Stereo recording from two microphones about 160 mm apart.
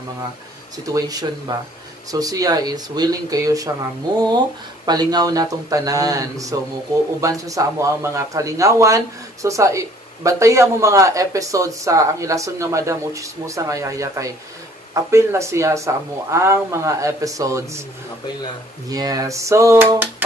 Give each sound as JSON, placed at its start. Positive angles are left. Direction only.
{"t": 0.8, "sound": "speech", "side_deg": -20}
{"t": 4.8, "sound": "speech", "side_deg": -25}
{"t": 18.9, "sound": "speech", "side_deg": -25}